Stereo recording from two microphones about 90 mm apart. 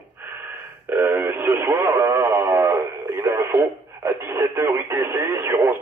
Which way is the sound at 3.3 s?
30° right (ahead or behind).